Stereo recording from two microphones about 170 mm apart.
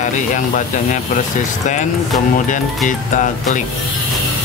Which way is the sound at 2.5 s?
45° left (ahead or behind).